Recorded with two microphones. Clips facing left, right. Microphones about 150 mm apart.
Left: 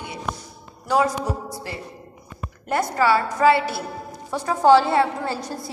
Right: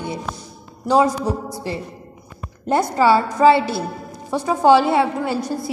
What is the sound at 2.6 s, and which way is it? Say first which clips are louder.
A woman's voice: right 4 dB; 30° right (ahead or behind).